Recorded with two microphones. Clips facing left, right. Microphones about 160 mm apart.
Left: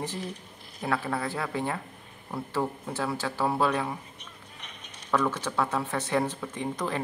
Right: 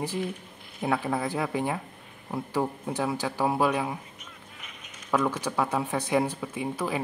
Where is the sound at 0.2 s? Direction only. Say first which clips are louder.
Right 5 dB; 35° left (ahead or behind).